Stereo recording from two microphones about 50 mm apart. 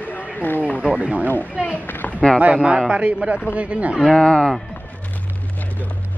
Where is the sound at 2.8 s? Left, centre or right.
Centre.